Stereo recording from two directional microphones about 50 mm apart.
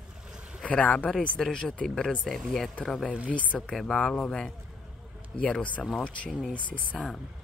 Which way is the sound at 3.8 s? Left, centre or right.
Centre.